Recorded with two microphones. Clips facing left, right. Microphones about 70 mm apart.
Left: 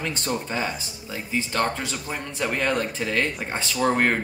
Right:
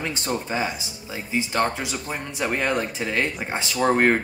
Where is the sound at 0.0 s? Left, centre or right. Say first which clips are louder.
Right 1 dB; centre.